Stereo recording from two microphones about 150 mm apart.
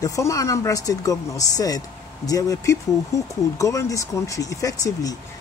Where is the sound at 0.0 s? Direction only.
20° left (ahead or behind).